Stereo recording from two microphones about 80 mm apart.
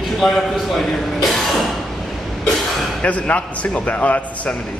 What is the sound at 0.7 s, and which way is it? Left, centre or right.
Speech, centre.